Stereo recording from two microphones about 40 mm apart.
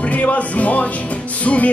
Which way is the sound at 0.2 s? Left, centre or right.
Left.